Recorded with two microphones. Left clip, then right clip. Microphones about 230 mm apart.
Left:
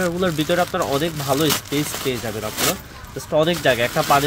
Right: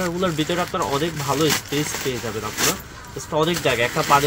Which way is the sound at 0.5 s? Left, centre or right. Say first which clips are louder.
Left 3 dB; left.